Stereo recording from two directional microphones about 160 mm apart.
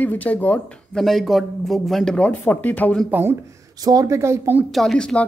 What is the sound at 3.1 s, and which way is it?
A woman's voice, 15° right (ahead or behind).